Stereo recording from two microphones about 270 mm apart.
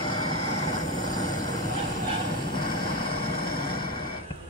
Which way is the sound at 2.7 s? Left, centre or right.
Left.